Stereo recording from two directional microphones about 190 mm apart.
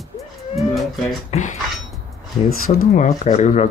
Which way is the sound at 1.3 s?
40° left (ahead or behind).